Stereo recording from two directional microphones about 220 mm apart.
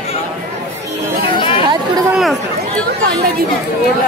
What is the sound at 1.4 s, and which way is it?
Chatter, 25° left (ahead or behind).